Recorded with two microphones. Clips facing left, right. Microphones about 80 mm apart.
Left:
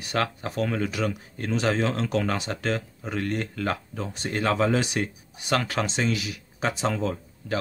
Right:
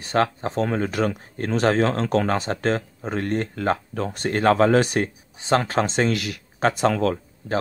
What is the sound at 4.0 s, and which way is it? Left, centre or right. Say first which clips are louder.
Speech: right 5 dB; right.